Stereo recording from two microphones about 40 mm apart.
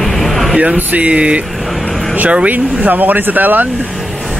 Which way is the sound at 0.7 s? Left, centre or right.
Right.